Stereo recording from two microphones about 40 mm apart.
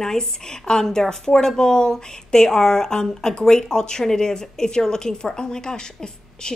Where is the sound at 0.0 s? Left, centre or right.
Centre.